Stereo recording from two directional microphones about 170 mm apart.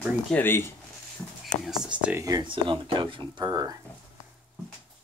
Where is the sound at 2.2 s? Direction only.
25° right (ahead or behind).